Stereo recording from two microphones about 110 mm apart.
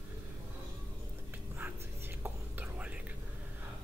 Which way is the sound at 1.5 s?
20° right (ahead or behind).